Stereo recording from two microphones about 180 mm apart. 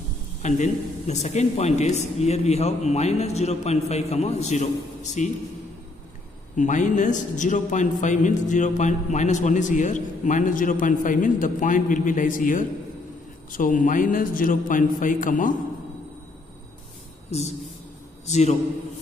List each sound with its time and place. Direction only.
0.4 s a man's voice: 40° left (ahead or behind)
6.5 s a man's voice: 45° left (ahead or behind)
17.3 s a man's voice: 35° left (ahead or behind)